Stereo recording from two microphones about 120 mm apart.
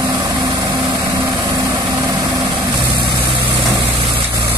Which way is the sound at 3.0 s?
40° right (ahead or behind).